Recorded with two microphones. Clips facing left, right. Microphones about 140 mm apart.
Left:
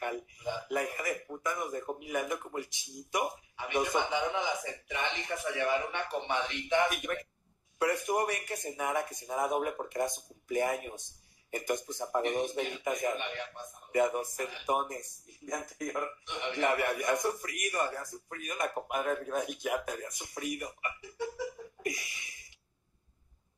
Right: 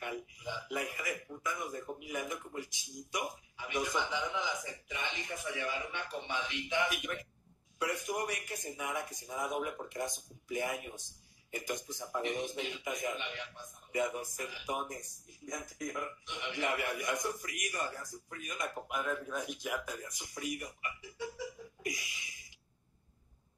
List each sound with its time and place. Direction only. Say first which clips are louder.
0.0 s a man's voice: left 5 dB; 50° left (ahead or behind)